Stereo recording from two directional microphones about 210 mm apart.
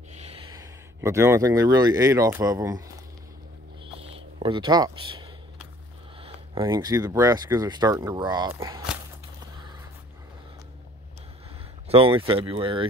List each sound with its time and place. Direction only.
0.2 s speech: 25° right (ahead or behind)
3.8 s a sound: 25° right (ahead or behind)
6.2 s speech: 20° right (ahead or behind)
11.9 s speech: 25° right (ahead or behind)